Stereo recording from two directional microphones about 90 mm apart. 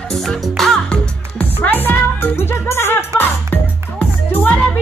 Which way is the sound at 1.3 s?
20° left (ahead or behind).